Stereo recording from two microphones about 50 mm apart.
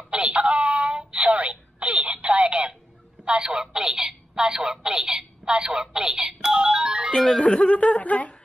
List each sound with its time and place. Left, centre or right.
0.1 s a sound: right
3.3 s a woman's voice: right
7.2 s speech: centre
7.4 s speech: left